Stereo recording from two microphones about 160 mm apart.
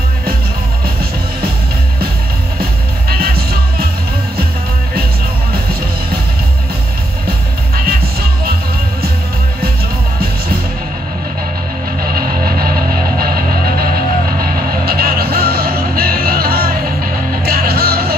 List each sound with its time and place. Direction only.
3.1 s music: 70° right (ahead or behind)
7.2 s music: 70° right (ahead or behind)
12.0 s music: 65° right (ahead or behind)
14.4 s music: 70° right (ahead or behind)